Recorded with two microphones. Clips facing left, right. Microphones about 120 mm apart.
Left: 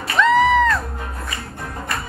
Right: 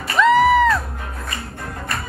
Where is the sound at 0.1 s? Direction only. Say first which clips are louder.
Right 1 dB; 5° right (ahead or behind).